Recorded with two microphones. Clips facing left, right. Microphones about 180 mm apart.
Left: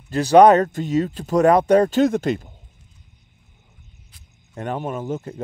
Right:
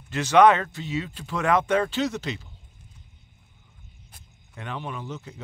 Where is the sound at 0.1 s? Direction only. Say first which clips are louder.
Left 6 dB; 35° left (ahead or behind).